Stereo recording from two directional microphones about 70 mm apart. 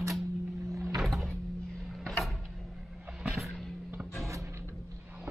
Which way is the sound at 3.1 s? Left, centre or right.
Centre.